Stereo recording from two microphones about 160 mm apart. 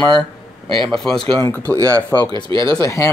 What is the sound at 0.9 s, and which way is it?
Speech, centre (ahead or behind).